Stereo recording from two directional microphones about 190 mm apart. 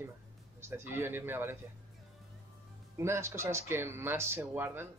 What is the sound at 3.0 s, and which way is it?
Speech, 15° right (ahead or behind).